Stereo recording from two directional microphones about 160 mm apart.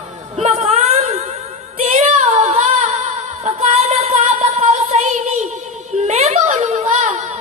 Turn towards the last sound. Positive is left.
turn(degrees=-45)  # may be behind; listen again after turning